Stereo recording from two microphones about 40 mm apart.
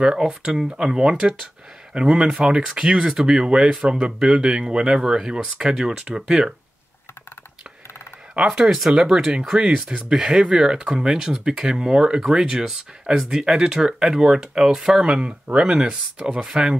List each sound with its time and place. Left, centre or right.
0.0 s speech: centre
8.4 s speech: centre
8.6 s speech: centre
15.0 s speech: right